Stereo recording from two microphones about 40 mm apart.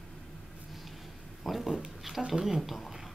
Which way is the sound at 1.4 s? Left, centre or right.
Centre.